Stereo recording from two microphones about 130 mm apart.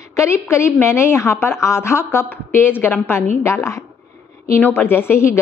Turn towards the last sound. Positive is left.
turn(degrees=20)  # may be behind; listen again after turning